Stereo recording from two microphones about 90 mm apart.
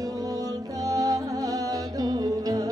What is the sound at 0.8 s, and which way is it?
Music, 45° right (ahead or behind).